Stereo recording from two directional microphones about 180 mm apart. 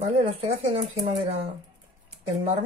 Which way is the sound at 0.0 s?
30° right (ahead or behind).